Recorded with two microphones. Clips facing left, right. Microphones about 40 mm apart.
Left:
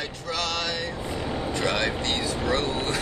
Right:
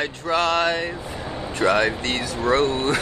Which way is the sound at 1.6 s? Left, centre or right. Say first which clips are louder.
Right 8 dB; right.